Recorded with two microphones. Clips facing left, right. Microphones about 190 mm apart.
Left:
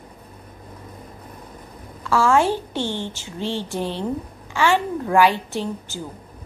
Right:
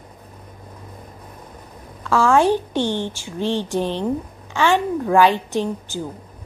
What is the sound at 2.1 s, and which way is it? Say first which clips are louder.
A child's voice: right 2 dB; 15° right (ahead or behind).